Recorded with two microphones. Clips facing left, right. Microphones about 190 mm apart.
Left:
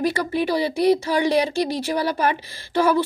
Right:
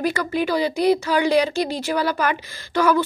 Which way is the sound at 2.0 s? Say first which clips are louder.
Even; 30° left (ahead or behind).